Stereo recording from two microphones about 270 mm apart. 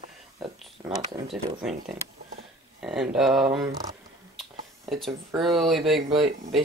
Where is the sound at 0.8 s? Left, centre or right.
Centre.